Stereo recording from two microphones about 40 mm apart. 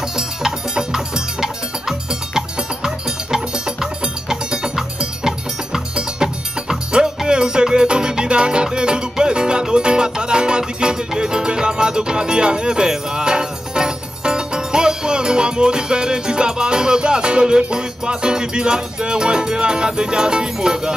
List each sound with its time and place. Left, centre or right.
0.1 s music: centre